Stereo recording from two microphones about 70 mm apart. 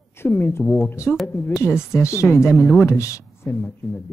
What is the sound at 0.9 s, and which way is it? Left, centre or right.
Speech, left.